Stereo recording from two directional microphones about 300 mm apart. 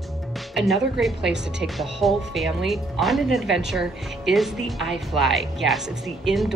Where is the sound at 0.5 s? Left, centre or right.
Centre.